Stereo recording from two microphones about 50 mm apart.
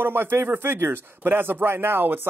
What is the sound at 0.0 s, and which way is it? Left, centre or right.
Speech, right.